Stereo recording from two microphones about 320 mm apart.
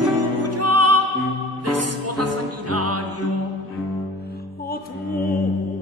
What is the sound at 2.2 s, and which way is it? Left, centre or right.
Music, right.